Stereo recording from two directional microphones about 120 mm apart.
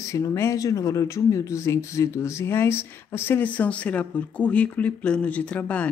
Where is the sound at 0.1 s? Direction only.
25° left (ahead or behind).